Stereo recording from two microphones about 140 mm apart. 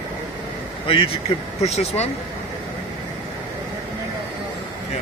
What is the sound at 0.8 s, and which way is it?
Speech, 40° left (ahead or behind).